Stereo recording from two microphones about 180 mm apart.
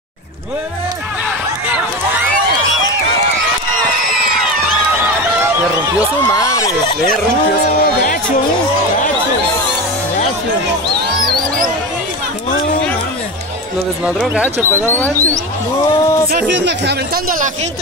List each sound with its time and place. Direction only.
5.9 s a sound: 15° left (ahead or behind)
7.8 s music: 55° left (ahead or behind)
14.0 s speech: 5° right (ahead or behind)
14.9 s speech: 10° left (ahead or behind)
16.3 s speech: 70° right (ahead or behind)